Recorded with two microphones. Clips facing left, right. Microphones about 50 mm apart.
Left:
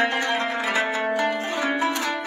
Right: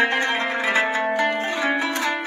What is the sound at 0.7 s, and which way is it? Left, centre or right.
Music, right.